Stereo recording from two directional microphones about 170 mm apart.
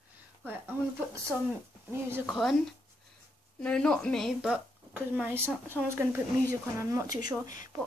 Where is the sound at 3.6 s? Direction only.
5° left (ahead or behind).